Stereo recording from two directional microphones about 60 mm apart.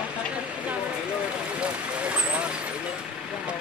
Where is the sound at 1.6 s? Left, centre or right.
Right.